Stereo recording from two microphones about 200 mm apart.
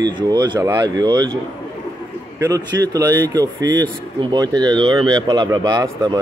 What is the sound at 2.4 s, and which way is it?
Speech, 15° right (ahead or behind).